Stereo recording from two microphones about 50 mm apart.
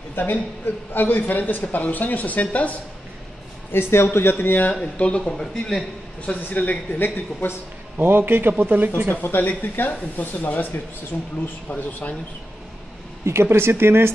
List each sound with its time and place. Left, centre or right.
0.1 s speech: left
3.7 s a man's voice: left
4.9 s speech: left
5.4 s a man's voice: centre
6.5 s speech: left
8.0 s speech: right
9.1 s speech: left
11.7 s speech: left
13.2 s speech: right